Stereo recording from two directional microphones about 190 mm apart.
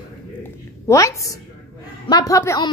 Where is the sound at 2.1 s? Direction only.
20° left (ahead or behind).